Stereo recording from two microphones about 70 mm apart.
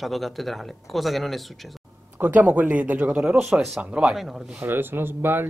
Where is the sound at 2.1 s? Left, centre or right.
Right.